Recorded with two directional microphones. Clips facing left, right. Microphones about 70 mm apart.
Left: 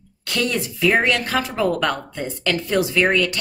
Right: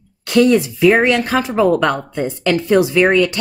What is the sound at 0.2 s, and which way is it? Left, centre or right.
A child's voice, right.